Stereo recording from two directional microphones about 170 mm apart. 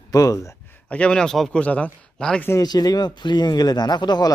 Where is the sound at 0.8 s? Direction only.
5° left (ahead or behind).